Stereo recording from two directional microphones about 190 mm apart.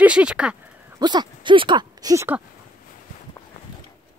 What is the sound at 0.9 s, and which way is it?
Speech, 20° right (ahead or behind).